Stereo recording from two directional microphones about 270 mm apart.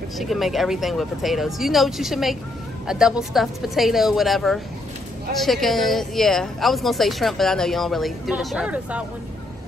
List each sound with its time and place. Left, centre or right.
0.2 s speech: centre